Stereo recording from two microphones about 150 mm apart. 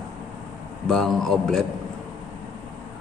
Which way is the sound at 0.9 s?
Centre (ahead or behind).